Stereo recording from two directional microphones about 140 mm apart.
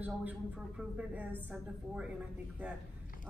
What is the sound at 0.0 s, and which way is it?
A woman's voice, 10° right (ahead or behind).